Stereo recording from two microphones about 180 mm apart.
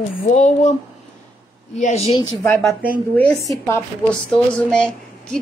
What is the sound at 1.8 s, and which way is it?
Speech, 35° left (ahead or behind).